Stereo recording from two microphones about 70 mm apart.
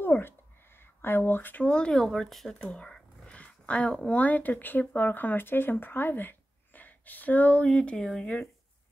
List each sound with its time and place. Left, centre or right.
0.0 s a sound: left
0.7 s speech: left; by 2.0 s centre
2.0 s speech: centre
2.7 s speech: centre
7.6 s speech: centre